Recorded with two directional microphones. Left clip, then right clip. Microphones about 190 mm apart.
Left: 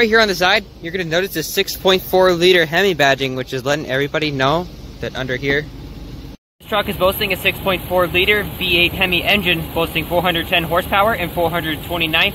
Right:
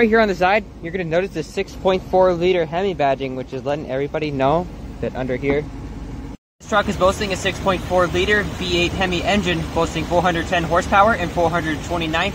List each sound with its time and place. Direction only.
0.0 s speech: 5° left (ahead or behind)
6.7 s speech: 5° left (ahead or behind)